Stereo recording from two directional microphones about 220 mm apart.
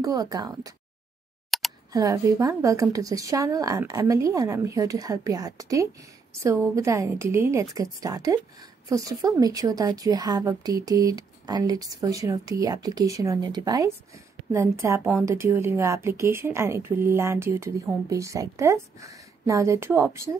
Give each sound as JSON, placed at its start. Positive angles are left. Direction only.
{"t": 0.0, "sound": "speech", "side_deg": -15}
{"t": 1.5, "sound": "a sound", "side_deg": 0}
{"t": 1.9, "sound": "speech", "side_deg": -15}